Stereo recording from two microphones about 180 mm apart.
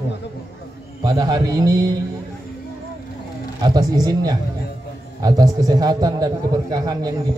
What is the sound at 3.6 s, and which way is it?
A man's voice, 20° right (ahead or behind).